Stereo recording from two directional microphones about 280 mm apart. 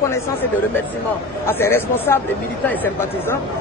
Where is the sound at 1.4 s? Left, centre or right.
Centre.